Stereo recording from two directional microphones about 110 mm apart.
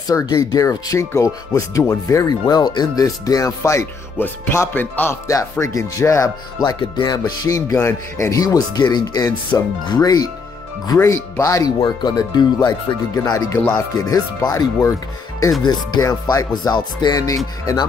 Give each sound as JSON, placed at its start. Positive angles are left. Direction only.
{"t": 0.1, "sound": "speech", "side_deg": 35}
{"t": 5.3, "sound": "speech", "side_deg": 30}
{"t": 13.1, "sound": "speech", "side_deg": 30}
{"t": 16.0, "sound": "speech", "side_deg": 35}